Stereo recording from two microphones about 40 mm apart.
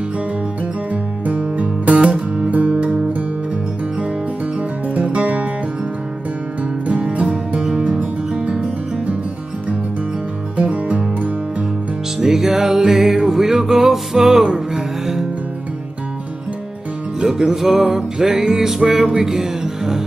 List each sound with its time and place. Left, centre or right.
1.2 s music: right
4.6 s music: right
6.9 s music: right
10.6 s music: right
12.2 s music: centre
14.4 s music: right
17.2 s music: centre